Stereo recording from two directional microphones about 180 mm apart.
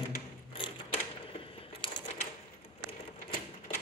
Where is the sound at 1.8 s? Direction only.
30° left (ahead or behind).